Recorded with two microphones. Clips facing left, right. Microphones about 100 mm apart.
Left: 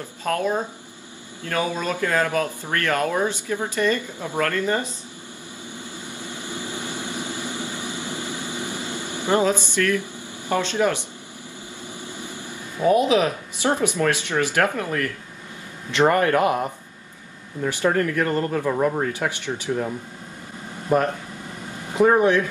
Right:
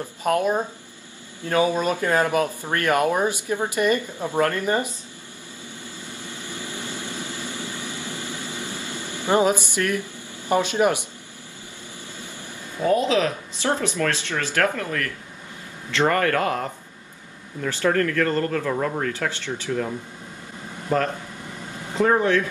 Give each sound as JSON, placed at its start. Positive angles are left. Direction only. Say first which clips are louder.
{"t": 0.2, "sound": "speech", "louder": "right 2 dB", "side_deg": -15}
{"t": 6.0, "sound": "vehicle", "louder": "left 2 dB", "side_deg": 15}
{"t": 9.3, "sound": "speech", "louder": "right 1 dB", "side_deg": -15}
{"t": 12.8, "sound": "speech", "louder": "left 2 dB", "side_deg": 20}
{"t": 20.9, "sound": "speech", "louder": "left 3 dB", "side_deg": 15}